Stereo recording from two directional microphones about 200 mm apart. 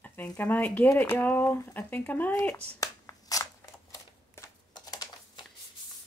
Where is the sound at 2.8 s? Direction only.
15° left (ahead or behind).